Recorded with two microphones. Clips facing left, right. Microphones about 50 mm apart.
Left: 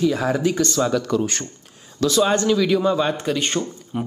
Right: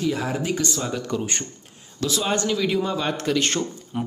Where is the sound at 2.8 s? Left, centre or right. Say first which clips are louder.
Left 6 dB; left.